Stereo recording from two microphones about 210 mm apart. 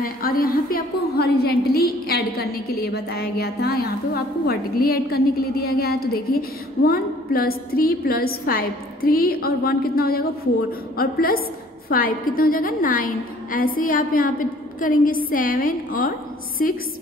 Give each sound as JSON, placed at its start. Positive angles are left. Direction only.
{"t": 0.0, "sound": "a woman's voice", "side_deg": 45}